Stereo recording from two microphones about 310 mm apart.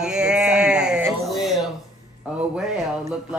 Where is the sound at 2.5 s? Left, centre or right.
Centre.